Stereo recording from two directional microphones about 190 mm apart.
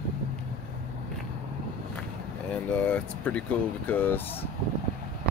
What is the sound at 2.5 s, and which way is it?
Speech, 5° left (ahead or behind).